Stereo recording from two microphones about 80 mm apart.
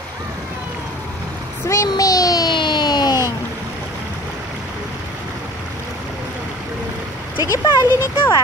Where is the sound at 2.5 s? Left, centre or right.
Left.